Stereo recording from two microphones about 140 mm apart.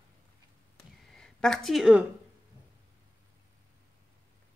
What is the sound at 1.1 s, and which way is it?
Speech, 5° left (ahead or behind).